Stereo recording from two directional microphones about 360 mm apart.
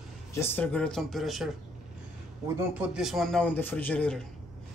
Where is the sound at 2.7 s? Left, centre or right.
Centre.